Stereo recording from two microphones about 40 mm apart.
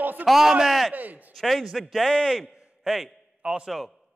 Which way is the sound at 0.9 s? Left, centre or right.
Right.